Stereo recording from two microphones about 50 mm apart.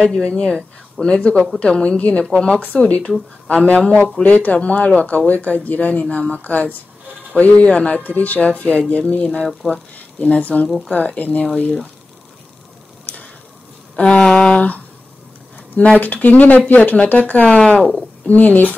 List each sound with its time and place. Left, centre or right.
0.0 s speech: left
2.2 s a sound: centre
3.4 s speech: left
7.6 s speech: left
8.0 s speech: left
9.2 s a sound: centre
9.7 s speech: left
13.0 s tick-tock: left
13.9 s a sound: centre
15.7 s speech: left
17.7 s a sound: centre
18.2 s speech: left